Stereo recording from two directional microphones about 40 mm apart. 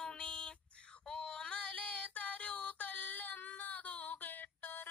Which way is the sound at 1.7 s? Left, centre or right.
Left.